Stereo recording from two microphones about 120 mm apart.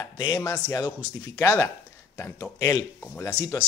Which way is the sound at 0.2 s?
30° left (ahead or behind).